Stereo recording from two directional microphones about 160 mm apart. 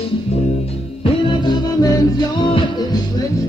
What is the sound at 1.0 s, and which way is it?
Music, 30° left (ahead or behind).